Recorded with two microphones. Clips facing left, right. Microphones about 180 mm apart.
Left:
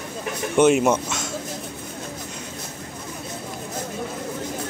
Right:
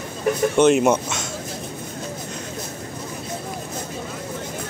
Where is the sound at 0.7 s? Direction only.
Centre (ahead or behind).